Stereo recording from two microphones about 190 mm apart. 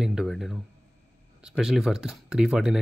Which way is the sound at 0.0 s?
5° right (ahead or behind).